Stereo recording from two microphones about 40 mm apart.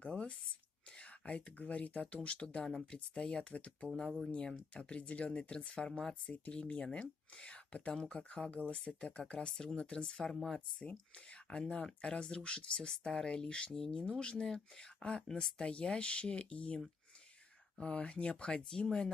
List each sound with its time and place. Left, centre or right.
0.0 s a sound: left
0.9 s speech: left; by 6.3 s centre
6.3 s speech: left; by 19.0 s centre